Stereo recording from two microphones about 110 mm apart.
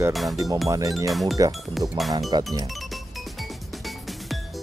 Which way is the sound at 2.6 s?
Centre (ahead or behind).